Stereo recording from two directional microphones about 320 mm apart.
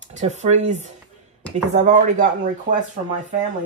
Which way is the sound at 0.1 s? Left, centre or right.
Right.